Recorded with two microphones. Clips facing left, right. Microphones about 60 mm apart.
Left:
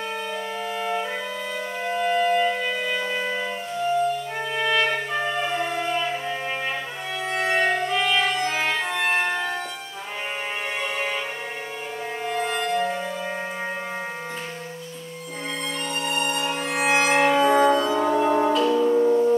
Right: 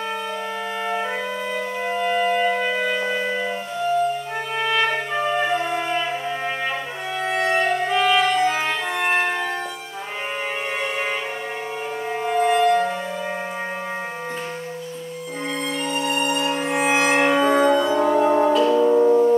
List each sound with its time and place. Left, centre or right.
1.9 s music: centre
2.5 s music: right
3.1 s music: centre
4.6 s violin: centre
5.5 s music: centre
7.2 s violin: centre
7.8 s music: centre
12.2 s music: centre
15.9 s music: centre
18.7 s music: centre